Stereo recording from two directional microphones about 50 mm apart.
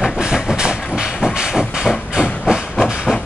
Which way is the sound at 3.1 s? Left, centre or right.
Centre.